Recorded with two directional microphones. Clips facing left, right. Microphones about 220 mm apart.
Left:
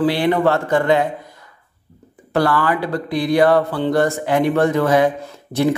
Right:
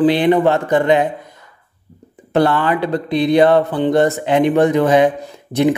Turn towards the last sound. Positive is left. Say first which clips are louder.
# right 3 dB
turn(degrees=-20)  # may be behind; listen again after turning